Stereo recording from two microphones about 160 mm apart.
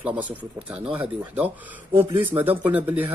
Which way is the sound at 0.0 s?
10° right (ahead or behind).